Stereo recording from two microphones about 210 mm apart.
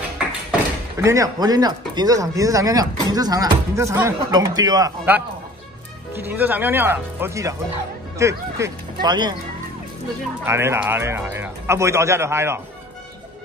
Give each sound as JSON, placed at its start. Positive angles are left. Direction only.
{"t": 0.9, "sound": "speech", "side_deg": -15}
{"t": 10.4, "sound": "speech", "side_deg": -10}